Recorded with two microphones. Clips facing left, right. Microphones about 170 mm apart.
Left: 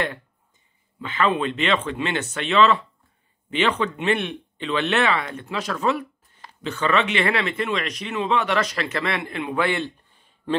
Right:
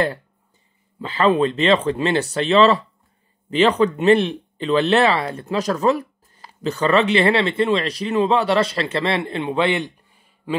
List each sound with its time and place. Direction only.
1.0 s speech: 35° right (ahead or behind); by 9.9 s 20° right (ahead or behind)